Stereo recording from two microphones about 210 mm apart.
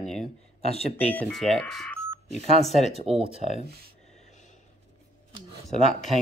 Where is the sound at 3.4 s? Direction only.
30° left (ahead or behind).